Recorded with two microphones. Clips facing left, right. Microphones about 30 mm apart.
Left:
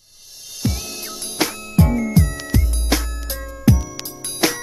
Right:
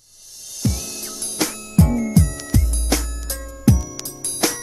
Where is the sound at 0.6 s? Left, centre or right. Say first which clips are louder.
Even; centre.